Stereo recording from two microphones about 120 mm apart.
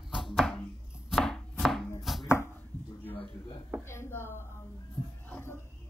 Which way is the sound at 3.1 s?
50° left (ahead or behind).